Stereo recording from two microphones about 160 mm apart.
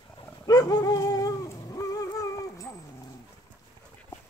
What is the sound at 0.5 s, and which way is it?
Dog, 25° left (ahead or behind).